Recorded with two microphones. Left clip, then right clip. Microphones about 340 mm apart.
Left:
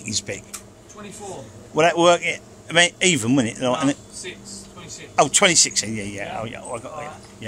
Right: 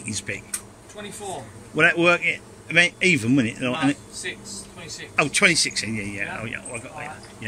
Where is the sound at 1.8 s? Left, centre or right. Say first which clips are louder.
Left 2 dB; centre.